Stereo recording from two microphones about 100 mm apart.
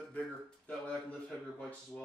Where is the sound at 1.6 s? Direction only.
15° left (ahead or behind).